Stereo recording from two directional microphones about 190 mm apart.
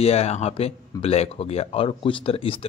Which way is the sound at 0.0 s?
35° left (ahead or behind).